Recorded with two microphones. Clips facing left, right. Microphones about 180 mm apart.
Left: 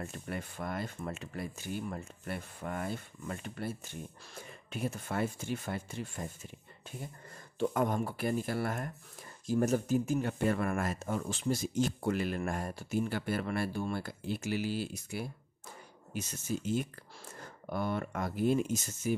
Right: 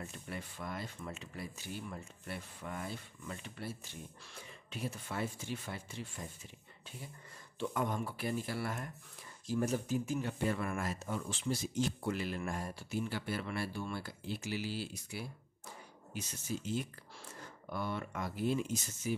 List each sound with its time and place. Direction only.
0.0 s speech: 50° left (ahead or behind)
7.5 s speech: 45° left (ahead or behind)